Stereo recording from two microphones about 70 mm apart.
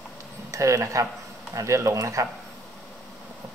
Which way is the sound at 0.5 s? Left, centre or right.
Right.